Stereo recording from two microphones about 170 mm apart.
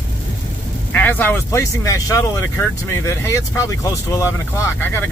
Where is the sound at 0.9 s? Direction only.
10° left (ahead or behind).